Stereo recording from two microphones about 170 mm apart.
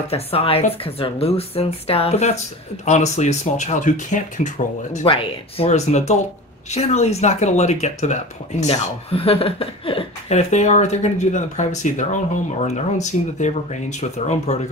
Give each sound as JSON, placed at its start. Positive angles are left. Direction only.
{"t": 0.1, "sound": "speech", "side_deg": 35}
{"t": 5.0, "sound": "speech", "side_deg": 30}